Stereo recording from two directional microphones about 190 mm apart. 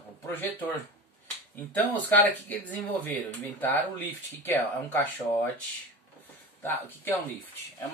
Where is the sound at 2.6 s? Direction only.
10° left (ahead or behind).